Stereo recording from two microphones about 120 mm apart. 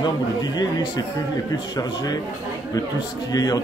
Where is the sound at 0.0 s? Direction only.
35° left (ahead or behind).